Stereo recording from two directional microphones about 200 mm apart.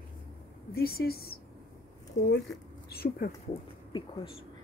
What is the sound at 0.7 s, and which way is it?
Speech, 50° left (ahead or behind).